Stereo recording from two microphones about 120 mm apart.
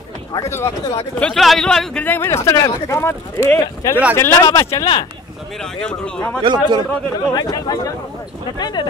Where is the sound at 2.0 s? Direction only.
15° left (ahead or behind).